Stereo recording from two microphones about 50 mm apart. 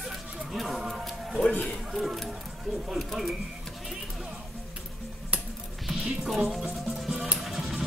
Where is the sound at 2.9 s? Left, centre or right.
Centre.